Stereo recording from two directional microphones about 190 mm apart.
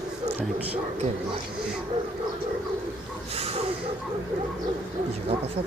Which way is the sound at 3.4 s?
35° right (ahead or behind).